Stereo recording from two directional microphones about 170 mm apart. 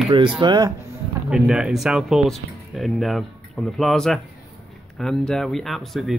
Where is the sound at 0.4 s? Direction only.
25° right (ahead or behind).